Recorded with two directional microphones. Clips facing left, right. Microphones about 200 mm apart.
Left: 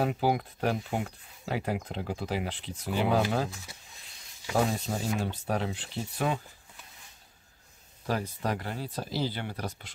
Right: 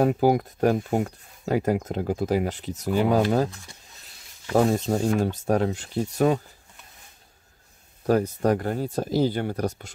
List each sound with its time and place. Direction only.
0.0 s speech: 45° right (ahead or behind)
4.5 s speech: 45° right (ahead or behind)
8.1 s speech: 45° right (ahead or behind)